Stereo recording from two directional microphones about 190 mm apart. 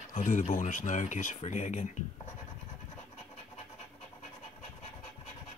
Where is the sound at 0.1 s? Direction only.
40° left (ahead or behind).